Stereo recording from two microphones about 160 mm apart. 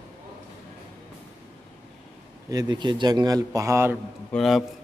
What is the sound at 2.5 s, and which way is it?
Speech, 25° right (ahead or behind).